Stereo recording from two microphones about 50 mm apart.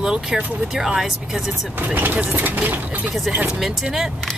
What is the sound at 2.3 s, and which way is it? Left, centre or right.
Speech, right.